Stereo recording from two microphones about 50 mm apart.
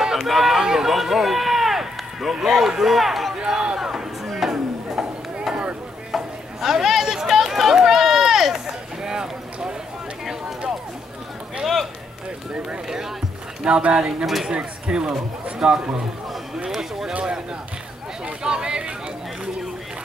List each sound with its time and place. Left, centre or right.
0.0 s run: centre
2.3 s speech: centre
3.3 s a sound: centre
4.3 s chop: centre
6.1 s chatter: centre
11.6 s run: centre
13.7 s speech: centre
14.2 s speech: centre
14.5 s speech: centre
16.5 s a sound: centre
17.1 s speech: centre
18.2 s a sound: centre